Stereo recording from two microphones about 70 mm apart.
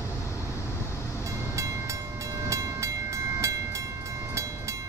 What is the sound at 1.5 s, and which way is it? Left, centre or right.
Train, right.